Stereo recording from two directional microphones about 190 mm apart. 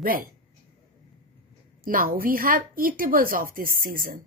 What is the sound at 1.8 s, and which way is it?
Speech, 45° right (ahead or behind).